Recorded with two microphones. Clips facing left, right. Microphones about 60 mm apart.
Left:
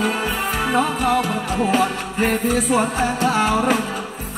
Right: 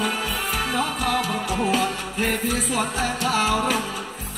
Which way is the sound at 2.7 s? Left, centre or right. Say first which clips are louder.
Left 5 dB; left.